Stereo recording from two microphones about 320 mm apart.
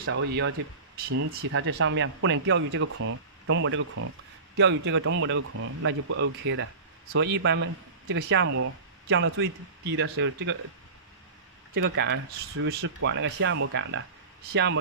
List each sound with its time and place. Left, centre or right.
0.0 s speech: right
8.5 s speech: right
9.1 s speech: right
11.7 s speech: right